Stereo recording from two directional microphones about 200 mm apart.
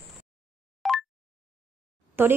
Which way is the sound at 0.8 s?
Centre (ahead or behind).